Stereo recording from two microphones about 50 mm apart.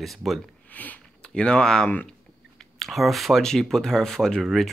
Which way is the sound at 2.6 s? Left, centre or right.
Centre.